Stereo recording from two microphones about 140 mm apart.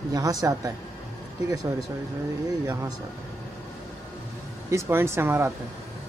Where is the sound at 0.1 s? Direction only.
25° right (ahead or behind).